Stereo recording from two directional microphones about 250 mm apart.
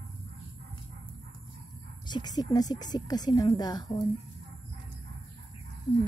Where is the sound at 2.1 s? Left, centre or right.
Centre.